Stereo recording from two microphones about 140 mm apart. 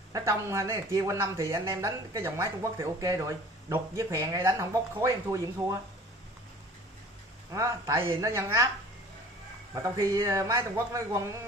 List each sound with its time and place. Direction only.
0.1 s speech: 20° right (ahead or behind)
7.5 s speech: 20° right (ahead or behind)
9.8 s speech: 25° right (ahead or behind)